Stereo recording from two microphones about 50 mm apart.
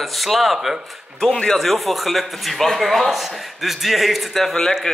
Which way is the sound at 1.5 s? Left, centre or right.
Centre.